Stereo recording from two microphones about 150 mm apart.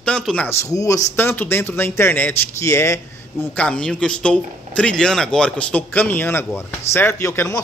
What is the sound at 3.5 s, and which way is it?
A man's voice, 10° left (ahead or behind).